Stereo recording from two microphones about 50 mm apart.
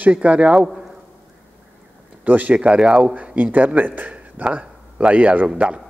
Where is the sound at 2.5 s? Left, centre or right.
Centre.